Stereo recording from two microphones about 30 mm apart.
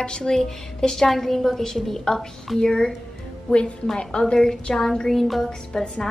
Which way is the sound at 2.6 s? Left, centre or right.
Left.